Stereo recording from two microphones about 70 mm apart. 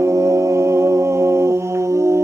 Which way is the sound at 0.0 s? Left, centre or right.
Right.